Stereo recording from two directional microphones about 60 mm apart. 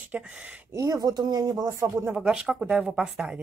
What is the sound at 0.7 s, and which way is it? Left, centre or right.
Speech, right.